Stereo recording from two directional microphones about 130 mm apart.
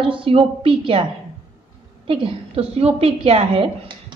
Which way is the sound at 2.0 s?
45° right (ahead or behind).